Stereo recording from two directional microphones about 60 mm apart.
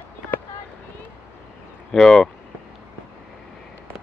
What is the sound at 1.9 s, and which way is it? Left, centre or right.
Speech, centre.